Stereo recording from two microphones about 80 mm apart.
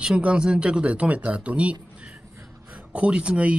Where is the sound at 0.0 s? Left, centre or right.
Centre.